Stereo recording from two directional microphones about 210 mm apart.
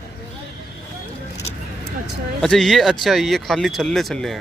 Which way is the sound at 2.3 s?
Centre (ahead or behind).